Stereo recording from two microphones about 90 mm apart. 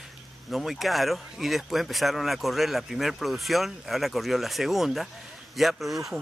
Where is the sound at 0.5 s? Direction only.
Centre (ahead or behind).